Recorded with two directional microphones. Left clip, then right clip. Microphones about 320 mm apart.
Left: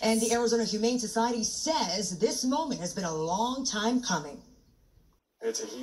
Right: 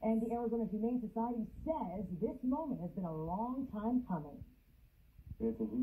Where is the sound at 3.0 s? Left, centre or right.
Left.